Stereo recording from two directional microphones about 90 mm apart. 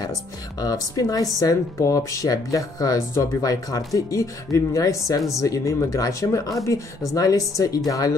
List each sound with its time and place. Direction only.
0.6 s speech: 40° left (ahead or behind)